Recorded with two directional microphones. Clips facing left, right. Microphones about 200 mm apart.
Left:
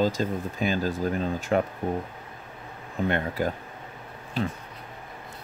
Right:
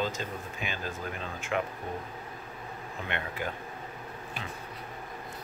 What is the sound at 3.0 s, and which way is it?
Speech, 40° left (ahead or behind).